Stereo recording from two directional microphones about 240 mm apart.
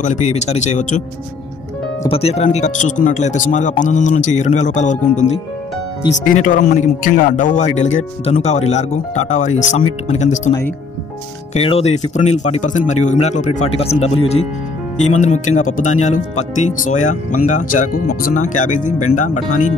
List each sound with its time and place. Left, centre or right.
0.0 s speech: left
2.0 s speech: left
6.3 s speech: left
11.5 s speech: left